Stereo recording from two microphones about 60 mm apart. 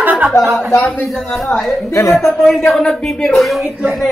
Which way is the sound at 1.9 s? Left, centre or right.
Left.